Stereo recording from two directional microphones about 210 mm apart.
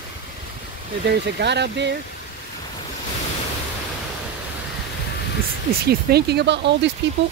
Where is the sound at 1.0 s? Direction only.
55° right (ahead or behind).